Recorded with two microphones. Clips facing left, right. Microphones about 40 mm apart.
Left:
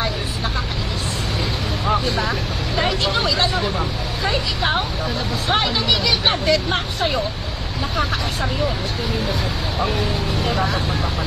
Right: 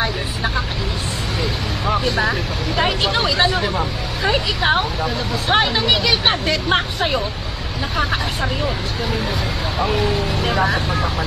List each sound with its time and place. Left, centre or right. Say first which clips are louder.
2.8 s speech: right 2 dB; centre
5.5 s speech: right 3 dB; centre
6.4 s speech: even; right
10.5 s speech: right 4 dB; centre